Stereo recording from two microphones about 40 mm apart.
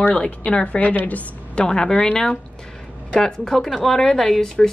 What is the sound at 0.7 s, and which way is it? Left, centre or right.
Speech, left.